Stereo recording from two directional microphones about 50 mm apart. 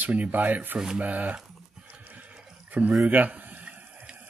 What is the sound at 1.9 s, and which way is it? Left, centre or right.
Horse, right.